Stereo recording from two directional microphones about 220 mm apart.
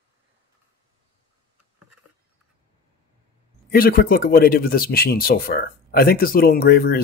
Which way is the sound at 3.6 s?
40° left (ahead or behind).